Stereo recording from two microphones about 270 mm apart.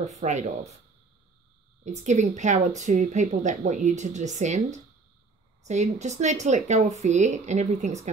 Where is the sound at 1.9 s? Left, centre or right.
Right.